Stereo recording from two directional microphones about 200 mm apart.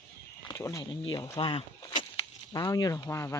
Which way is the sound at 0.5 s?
15° left (ahead or behind).